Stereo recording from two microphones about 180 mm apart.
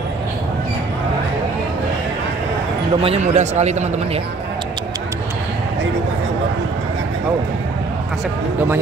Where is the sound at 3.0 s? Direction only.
35° right (ahead or behind).